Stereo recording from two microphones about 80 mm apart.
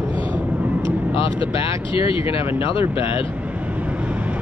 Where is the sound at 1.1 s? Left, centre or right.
Left.